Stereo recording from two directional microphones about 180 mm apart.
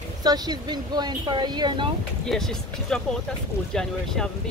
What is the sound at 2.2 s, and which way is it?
Speech, centre (ahead or behind).